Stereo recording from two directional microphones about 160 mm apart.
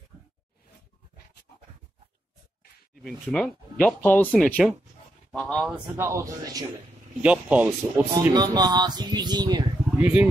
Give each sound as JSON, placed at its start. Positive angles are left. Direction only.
{"t": 3.0, "sound": "speech", "side_deg": 0}
{"t": 5.9, "sound": "speech", "side_deg": -20}
{"t": 7.2, "sound": "speech", "side_deg": -10}
{"t": 8.1, "sound": "speech", "side_deg": -25}
{"t": 9.8, "sound": "speech", "side_deg": -10}